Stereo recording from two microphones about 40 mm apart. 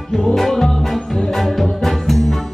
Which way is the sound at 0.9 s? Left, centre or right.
Centre.